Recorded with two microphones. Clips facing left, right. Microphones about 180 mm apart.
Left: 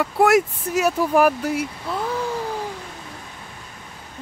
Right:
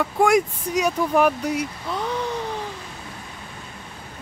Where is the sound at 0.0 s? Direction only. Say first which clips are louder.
Left 2 dB; 5° left (ahead or behind).